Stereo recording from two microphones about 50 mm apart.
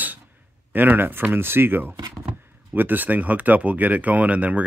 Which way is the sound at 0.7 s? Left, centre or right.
Right.